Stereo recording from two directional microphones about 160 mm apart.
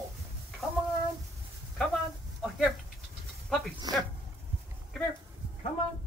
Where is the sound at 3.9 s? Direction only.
25° right (ahead or behind).